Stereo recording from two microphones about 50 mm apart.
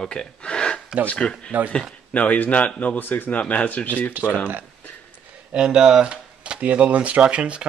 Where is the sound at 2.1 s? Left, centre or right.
Left.